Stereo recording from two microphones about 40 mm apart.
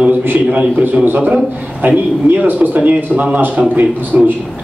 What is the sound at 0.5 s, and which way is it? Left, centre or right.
Speech, right.